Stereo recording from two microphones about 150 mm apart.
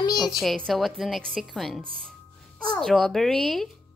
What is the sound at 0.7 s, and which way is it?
A woman's voice, centre (ahead or behind).